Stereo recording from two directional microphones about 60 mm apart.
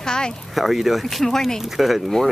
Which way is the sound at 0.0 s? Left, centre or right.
Centre.